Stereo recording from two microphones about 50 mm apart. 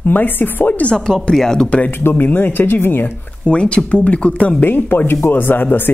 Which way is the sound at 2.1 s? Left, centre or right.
Left.